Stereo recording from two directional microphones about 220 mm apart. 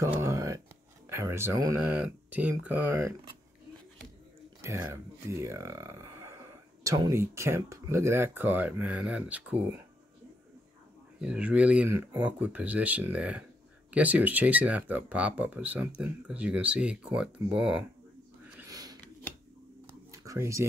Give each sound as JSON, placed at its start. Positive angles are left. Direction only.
{"t": 0.0, "sound": "speech", "side_deg": -15}
{"t": 4.6, "sound": "speech", "side_deg": -15}
{"t": 11.1, "sound": "speech", "side_deg": -5}
{"t": 18.7, "sound": "a sound", "side_deg": -15}